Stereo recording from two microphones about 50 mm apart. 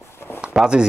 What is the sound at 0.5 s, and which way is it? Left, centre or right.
Speech, centre.